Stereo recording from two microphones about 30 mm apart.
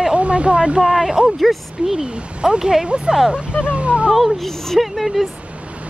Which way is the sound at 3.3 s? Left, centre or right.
Right.